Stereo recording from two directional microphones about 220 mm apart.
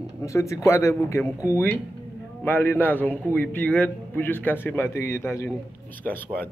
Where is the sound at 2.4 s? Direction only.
10° left (ahead or behind).